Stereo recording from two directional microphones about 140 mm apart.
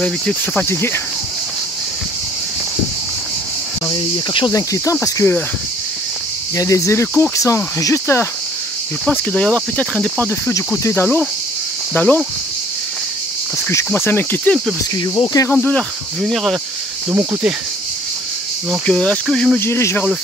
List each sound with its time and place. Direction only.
0.0 s speech: 10° left (ahead or behind)
4.5 s speech: 20° left (ahead or behind)
6.5 s speech: 25° left (ahead or behind)
9.3 s speech: 10° left (ahead or behind)
13.9 s speech: 15° left (ahead or behind)
15.1 s speech: 25° left (ahead or behind)
15.5 s speech: 10° left (ahead or behind)
17.1 s speech: 25° right (ahead or behind)
18.9 s speech: 5° left (ahead or behind)
19.6 s speech: 20° left (ahead or behind)